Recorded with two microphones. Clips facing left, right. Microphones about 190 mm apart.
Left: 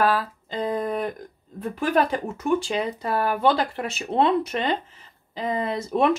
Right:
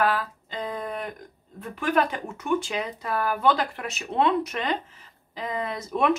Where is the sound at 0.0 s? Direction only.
35° left (ahead or behind).